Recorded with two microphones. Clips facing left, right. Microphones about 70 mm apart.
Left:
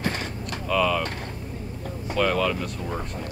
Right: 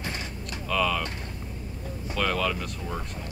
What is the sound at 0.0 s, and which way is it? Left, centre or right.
Mechanisms, left.